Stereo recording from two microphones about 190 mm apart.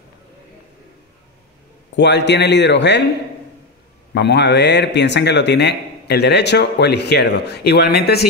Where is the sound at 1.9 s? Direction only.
65° left (ahead or behind).